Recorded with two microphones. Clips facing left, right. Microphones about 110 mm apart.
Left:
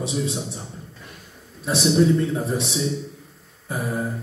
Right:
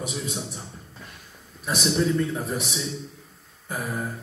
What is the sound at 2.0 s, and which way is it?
Speech, 25° left (ahead or behind).